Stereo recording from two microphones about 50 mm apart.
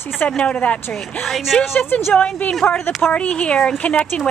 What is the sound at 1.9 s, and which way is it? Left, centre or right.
Speech, left.